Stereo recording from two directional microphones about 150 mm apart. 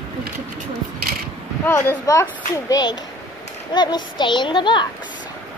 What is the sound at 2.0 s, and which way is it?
A child's voice, 20° left (ahead or behind).